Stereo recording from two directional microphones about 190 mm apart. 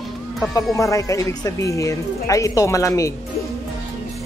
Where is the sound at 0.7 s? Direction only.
15° left (ahead or behind).